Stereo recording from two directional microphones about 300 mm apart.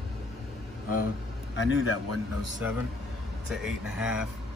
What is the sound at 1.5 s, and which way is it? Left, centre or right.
Speech, left.